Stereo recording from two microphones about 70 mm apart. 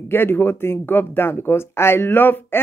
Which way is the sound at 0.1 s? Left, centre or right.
Left.